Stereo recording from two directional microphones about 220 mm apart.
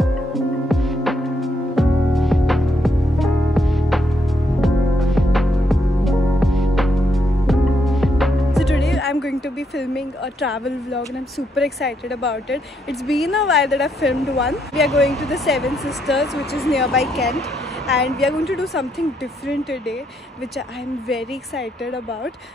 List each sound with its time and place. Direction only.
0.0 s music: centre (ahead or behind)
9.9 s a woman's voice: centre (ahead or behind)
12.2 s speech: 50° left (ahead or behind)
13.0 s a woman's voice: centre (ahead or behind)